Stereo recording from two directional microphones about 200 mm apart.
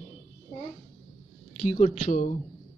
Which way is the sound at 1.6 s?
40° left (ahead or behind).